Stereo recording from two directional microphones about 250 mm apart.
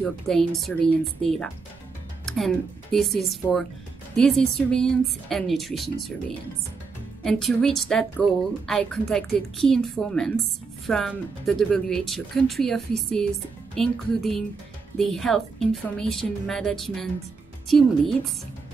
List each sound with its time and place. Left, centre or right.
0.0 s speech: centre
7.2 s speech: centre